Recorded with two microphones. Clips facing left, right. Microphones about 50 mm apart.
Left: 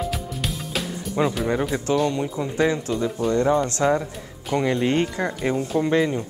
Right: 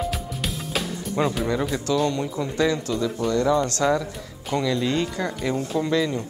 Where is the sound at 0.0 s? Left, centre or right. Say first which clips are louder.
Even; centre.